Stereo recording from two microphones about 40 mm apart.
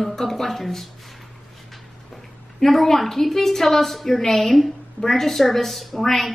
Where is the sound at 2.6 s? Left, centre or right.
Centre.